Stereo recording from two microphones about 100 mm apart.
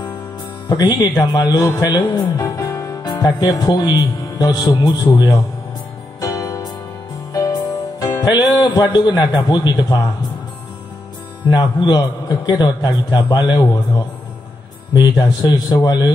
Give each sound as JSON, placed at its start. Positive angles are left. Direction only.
{"t": 0.7, "sound": "speech", "side_deg": 45}
{"t": 1.8, "sound": "music", "side_deg": 40}
{"t": 3.0, "sound": "speech", "side_deg": 40}
{"t": 6.2, "sound": "music", "side_deg": 35}
{"t": 8.0, "sound": "music", "side_deg": 30}
{"t": 8.3, "sound": "a man's voice", "side_deg": 35}
{"t": 11.5, "sound": "a man's voice", "side_deg": 45}